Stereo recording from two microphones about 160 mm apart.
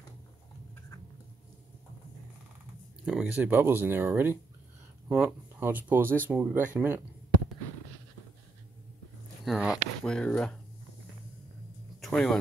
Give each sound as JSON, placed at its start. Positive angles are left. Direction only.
{"t": 3.1, "sound": "speech", "side_deg": -5}
{"t": 9.4, "sound": "speech", "side_deg": -5}
{"t": 12.0, "sound": "speech", "side_deg": 5}